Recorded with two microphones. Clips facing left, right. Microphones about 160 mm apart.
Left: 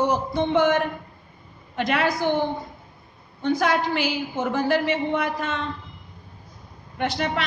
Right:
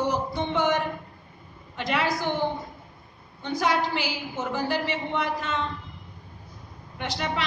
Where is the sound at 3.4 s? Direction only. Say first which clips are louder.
Left 3 dB; 55° left (ahead or behind).